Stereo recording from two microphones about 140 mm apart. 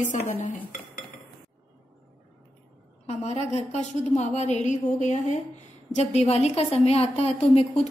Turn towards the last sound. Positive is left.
turn(degrees=50)  # may be behind; listen again after turning